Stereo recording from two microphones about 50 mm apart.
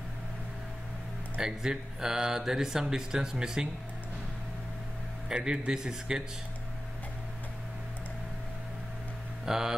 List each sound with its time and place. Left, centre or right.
1.4 s speech: centre
5.3 s speech: centre
9.5 s speech: centre